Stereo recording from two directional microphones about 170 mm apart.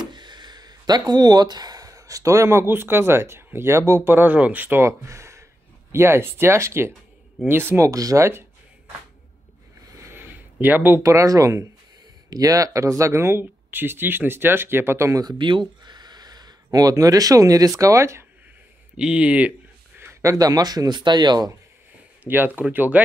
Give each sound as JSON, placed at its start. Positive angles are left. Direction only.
{"t": 0.0, "sound": "speech", "side_deg": -25}
{"t": 9.9, "sound": "speech", "side_deg": -15}
{"t": 18.9, "sound": "speech", "side_deg": -5}
{"t": 22.2, "sound": "speech", "side_deg": -10}